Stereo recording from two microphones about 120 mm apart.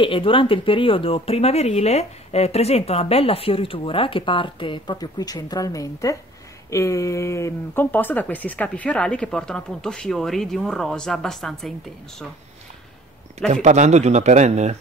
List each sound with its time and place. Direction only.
0.0 s speech: 45° left (ahead or behind); by 11.7 s 5° left (ahead or behind)
13.5 s speech: 80° right